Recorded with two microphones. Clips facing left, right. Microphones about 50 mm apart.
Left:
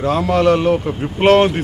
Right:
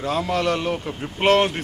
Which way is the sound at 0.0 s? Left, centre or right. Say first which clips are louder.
Left 7 dB; centre.